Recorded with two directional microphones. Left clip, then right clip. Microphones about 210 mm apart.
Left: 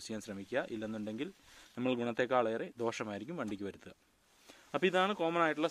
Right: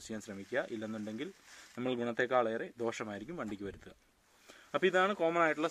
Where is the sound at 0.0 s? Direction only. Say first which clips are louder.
Left 1 dB; 45° left (ahead or behind).